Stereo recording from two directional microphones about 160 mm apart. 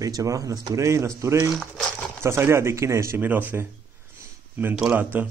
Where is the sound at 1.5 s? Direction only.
5° left (ahead or behind).